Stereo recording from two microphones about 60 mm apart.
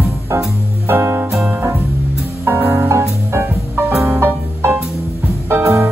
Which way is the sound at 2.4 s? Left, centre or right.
Right.